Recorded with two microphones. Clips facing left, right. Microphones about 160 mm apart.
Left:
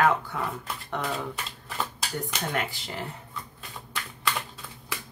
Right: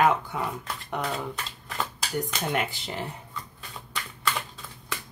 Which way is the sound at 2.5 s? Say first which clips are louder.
Right 2 dB; 20° right (ahead or behind).